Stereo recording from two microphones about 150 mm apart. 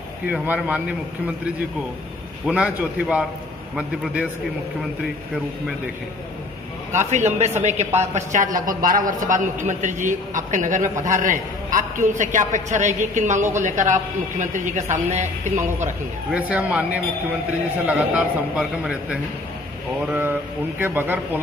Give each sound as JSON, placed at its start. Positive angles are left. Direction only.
{"t": 0.3, "sound": "a man's voice", "side_deg": -10}
{"t": 2.4, "sound": "a man's voice", "side_deg": -5}
{"t": 6.9, "sound": "a woman's voice", "side_deg": -50}
{"t": 8.5, "sound": "a man's voice", "side_deg": -65}
{"t": 16.3, "sound": "a man's voice", "side_deg": -10}